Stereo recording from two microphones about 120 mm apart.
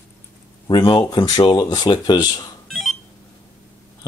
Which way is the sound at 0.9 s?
40° left (ahead or behind).